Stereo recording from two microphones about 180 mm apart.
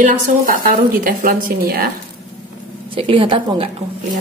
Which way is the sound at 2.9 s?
30° right (ahead or behind).